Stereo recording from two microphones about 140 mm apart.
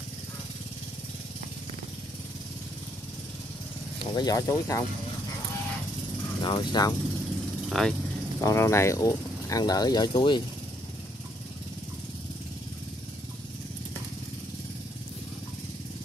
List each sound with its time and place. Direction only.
4.0 s speech: 30° left (ahead or behind)
6.4 s speech: 35° left (ahead or behind)
7.7 s speech: centre (ahead or behind)
8.4 s speech: 20° left (ahead or behind)